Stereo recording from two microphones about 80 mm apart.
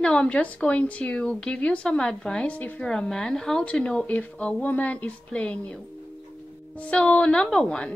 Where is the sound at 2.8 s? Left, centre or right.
Centre.